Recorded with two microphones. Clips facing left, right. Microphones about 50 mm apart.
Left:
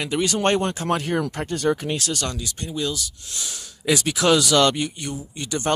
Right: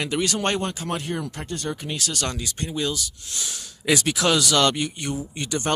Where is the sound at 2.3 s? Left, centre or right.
Centre.